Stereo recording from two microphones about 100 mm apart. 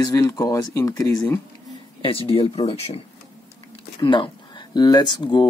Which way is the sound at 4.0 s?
55° left (ahead or behind).